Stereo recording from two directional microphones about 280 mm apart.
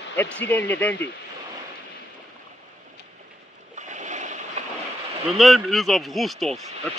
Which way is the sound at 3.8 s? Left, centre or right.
Right.